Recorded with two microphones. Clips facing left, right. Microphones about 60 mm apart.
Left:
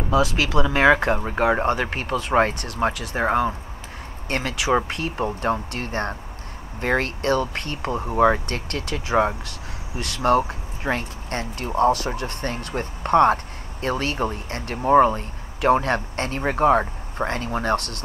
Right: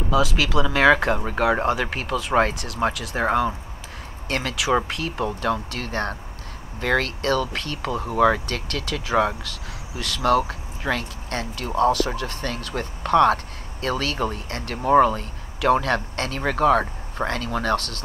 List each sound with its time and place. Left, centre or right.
0.1 s speech: centre
5.2 s speech: left
10.8 s speech: centre
13.3 s speech: centre